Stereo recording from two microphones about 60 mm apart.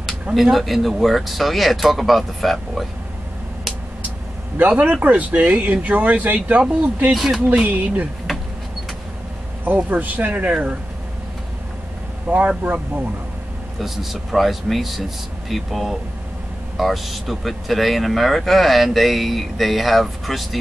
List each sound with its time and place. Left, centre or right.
0.0 s speech: centre
4.6 s a man's voice: right
7.2 s speech: centre
7.5 s speech: right
8.3 s a sound: centre
9.8 s speech: right
12.3 s speech: right
13.7 s speech: centre